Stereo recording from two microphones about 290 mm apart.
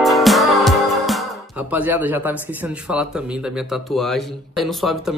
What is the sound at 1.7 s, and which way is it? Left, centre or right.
Speech, centre.